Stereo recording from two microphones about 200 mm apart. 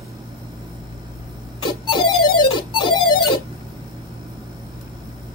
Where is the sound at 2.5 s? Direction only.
25° left (ahead or behind).